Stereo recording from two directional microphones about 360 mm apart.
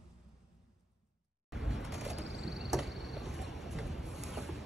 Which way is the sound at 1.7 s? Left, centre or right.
Centre.